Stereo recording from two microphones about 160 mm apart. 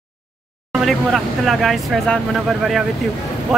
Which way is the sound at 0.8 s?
Centre (ahead or behind).